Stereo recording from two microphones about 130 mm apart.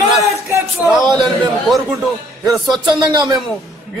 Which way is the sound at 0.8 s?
5° right (ahead or behind).